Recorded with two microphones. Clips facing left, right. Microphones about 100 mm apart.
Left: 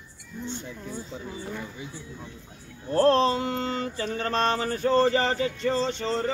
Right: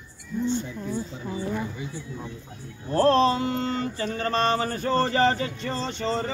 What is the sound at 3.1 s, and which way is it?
Speech, centre (ahead or behind).